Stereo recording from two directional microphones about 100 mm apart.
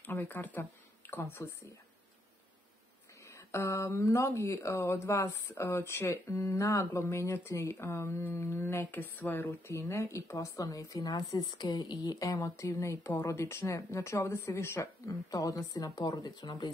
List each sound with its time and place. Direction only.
0.0 s speech: 20° left (ahead or behind)
3.3 s speech: 30° left (ahead or behind)
9.7 s speech: 30° left (ahead or behind)